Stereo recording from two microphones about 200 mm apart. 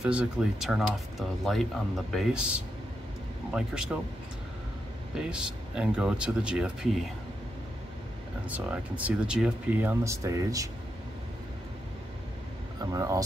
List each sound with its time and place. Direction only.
0.0 s speech: 5° right (ahead or behind)
5.1 s speech: 5° right (ahead or behind)
8.5 s speech: 5° right (ahead or behind)
12.8 s speech: 15° right (ahead or behind)